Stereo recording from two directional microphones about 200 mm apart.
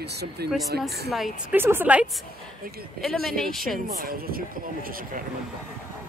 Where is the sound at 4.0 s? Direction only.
45° right (ahead or behind).